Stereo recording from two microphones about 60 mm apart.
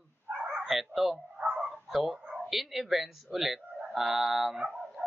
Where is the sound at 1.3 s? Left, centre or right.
Centre.